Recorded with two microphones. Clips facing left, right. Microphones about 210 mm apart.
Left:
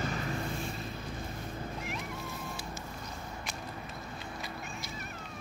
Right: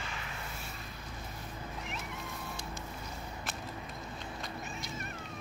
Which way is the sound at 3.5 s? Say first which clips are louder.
Right 2 dB; centre (ahead or behind).